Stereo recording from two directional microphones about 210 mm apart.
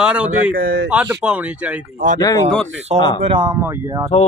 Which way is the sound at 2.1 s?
15° left (ahead or behind).